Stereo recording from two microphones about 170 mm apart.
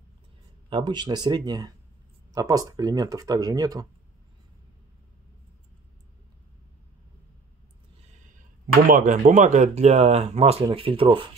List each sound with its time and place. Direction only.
0.7 s speech: 25° right (ahead or behind)
8.8 s speech: 50° right (ahead or behind); by 11.2 s 30° right (ahead or behind)